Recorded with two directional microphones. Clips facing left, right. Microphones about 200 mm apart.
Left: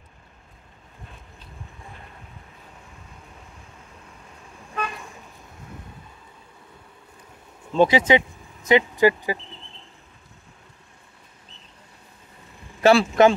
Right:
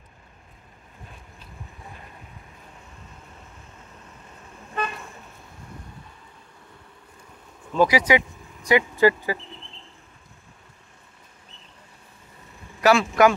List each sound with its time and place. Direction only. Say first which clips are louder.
4.7 s vehicle: right 1 dB; 5° right (ahead or behind)
7.7 s speech: left 2 dB; 25° left (ahead or behind)
12.8 s speech: left 2 dB; 25° left (ahead or behind)